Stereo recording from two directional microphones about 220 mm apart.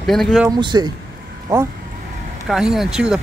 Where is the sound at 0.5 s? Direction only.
20° right (ahead or behind).